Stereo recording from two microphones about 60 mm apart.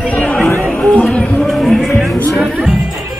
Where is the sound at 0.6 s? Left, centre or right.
Centre.